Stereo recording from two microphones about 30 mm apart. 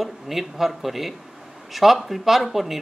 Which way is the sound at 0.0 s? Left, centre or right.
Centre.